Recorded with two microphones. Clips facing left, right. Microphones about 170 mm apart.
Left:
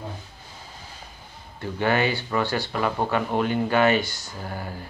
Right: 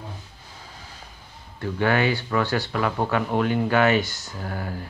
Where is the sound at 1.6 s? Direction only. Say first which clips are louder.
Right 1 dB; 20° left (ahead or behind).